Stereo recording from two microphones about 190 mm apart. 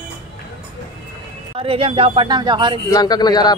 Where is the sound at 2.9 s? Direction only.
20° left (ahead or behind).